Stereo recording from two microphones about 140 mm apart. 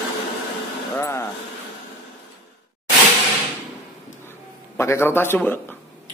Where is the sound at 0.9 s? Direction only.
20° left (ahead or behind).